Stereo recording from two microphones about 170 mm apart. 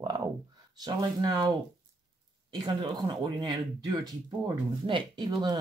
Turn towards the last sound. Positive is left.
turn(degrees=-25)  # may be behind; listen again after turning